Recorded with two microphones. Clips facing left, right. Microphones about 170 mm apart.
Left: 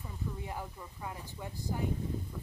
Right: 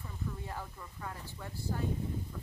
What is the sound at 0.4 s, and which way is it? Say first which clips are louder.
Speech: left 2 dB; 15° left (ahead or behind).